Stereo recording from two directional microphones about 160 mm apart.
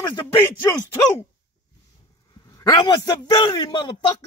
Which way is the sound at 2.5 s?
25° left (ahead or behind).